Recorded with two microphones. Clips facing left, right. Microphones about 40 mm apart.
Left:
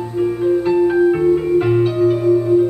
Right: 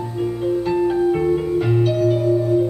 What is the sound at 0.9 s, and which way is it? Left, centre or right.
Music, left.